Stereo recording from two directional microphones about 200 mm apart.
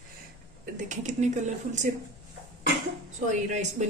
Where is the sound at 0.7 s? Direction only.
40° right (ahead or behind).